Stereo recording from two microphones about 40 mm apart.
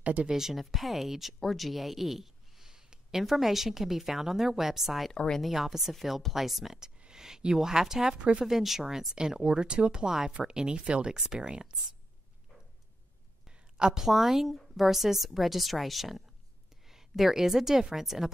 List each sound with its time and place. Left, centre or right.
0.0 s speech: right
0.3 s a woman's voice: centre
5.1 s speech: left
5.4 s a woman's voice: centre
8.2 s speech: right
8.5 s speech: centre
9.1 s speech: centre
13.7 s a woman's voice: centre